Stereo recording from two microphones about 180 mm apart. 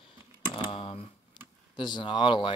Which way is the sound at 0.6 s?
30° left (ahead or behind).